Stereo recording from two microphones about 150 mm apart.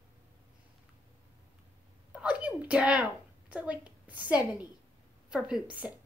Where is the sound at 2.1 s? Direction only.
10° right (ahead or behind).